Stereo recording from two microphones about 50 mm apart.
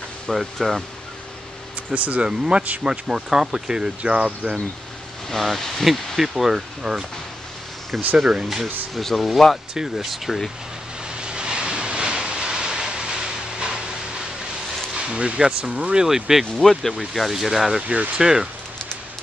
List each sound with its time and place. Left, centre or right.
0.3 s speech: centre
2.0 s speech: right
2.2 s speech: centre
5.3 s speech: centre
11.1 s vehicle: centre
15.0 s speech: right
17.8 s speech: right